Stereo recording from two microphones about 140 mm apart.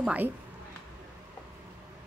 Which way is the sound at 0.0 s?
10° right (ahead or behind).